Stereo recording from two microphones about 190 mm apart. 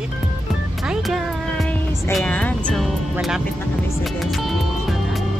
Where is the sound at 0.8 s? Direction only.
Centre (ahead or behind).